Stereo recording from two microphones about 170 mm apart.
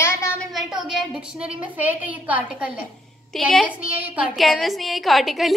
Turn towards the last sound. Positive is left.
turn(degrees=0)  # may be behind; listen again after turning